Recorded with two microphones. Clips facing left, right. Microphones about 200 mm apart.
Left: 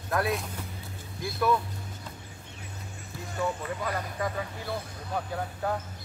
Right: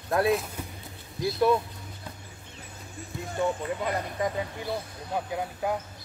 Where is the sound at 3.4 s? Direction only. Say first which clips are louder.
Right 3 dB; 25° right (ahead or behind).